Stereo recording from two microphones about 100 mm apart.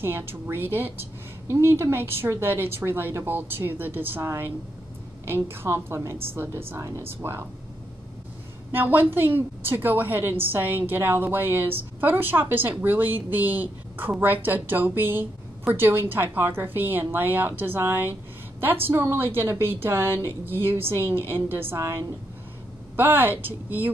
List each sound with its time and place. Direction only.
0.0 s a woman's voice: 20° right (ahead or behind)
8.7 s a woman's voice: 20° right (ahead or behind)